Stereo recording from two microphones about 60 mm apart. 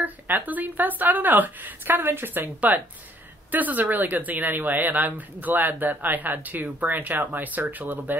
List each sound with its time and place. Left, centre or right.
0.0 s speech: right
3.5 s speech: right